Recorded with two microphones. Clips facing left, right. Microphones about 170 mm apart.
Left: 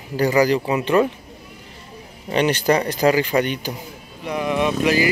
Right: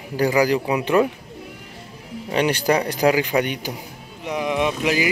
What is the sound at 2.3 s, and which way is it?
A man's voice, 10° right (ahead or behind).